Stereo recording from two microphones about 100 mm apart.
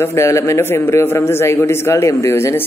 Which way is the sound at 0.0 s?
30° left (ahead or behind).